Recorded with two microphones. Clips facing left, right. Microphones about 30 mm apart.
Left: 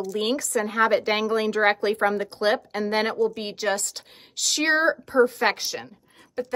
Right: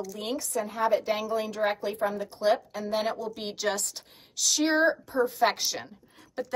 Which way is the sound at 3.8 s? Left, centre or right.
Left.